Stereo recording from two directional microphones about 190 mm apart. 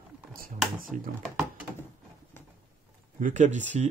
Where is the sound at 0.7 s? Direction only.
50° right (ahead or behind).